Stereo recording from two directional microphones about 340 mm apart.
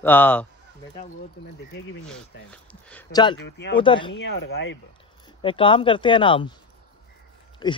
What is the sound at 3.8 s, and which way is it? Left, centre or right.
Speech, centre.